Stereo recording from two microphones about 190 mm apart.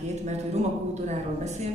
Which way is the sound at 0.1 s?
35° right (ahead or behind).